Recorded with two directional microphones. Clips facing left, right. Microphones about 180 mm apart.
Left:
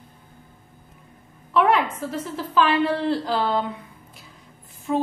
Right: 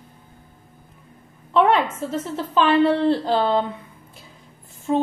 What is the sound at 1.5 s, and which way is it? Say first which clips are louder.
A woman's voice: right 2 dB; 25° right (ahead or behind).